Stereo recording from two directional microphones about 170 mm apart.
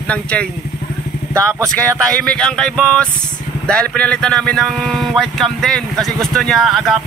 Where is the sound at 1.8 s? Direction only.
5° left (ahead or behind).